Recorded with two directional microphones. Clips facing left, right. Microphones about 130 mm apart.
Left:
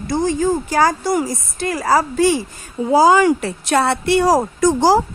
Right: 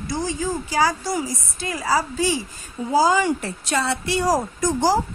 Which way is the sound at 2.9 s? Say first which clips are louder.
Left 6 dB; 75° left (ahead or behind).